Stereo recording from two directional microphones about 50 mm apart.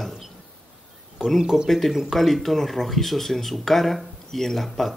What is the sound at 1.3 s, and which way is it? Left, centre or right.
Speech, centre.